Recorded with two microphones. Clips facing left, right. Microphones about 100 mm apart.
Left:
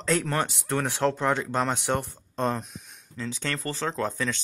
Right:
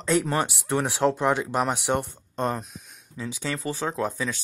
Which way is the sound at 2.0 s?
5° right (ahead or behind).